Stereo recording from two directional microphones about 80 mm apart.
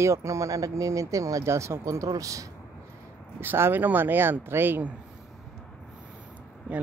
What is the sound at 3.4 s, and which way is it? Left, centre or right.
Speech, right.